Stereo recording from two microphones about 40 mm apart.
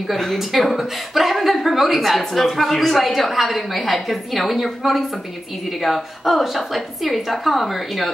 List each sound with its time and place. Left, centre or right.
0.1 s a woman's voice: centre